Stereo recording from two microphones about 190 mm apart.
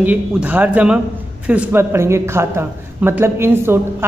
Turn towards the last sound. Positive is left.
turn(degrees=-10)  # may be behind; listen again after turning